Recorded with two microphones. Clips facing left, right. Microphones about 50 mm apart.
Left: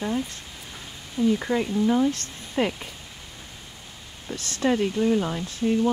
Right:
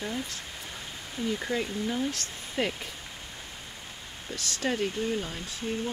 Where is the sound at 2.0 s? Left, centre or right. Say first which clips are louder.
Left 8 dB; left.